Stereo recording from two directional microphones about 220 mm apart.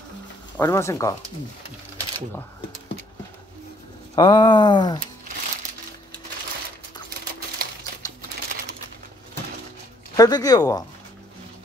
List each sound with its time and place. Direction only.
0.6 s speech: 10° left (ahead or behind)
4.1 s speech: 20° left (ahead or behind)
10.1 s speech: 15° left (ahead or behind)